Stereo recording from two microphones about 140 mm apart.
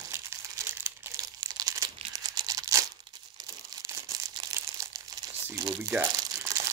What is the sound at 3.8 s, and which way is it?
Crumpling, 20° right (ahead or behind).